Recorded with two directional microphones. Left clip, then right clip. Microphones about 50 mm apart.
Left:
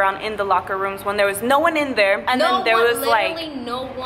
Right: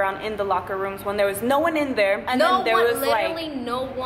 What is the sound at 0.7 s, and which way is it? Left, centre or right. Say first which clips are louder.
Speech: left 4 dB; centre.